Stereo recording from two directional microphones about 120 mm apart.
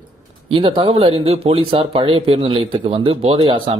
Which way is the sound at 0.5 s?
45° right (ahead or behind).